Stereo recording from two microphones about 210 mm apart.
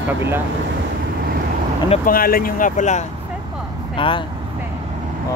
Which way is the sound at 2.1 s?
45° left (ahead or behind).